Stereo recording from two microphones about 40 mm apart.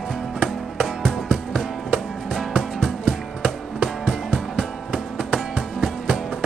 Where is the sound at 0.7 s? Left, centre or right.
Centre.